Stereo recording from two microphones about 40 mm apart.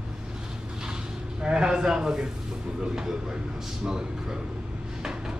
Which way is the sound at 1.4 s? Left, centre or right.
Right.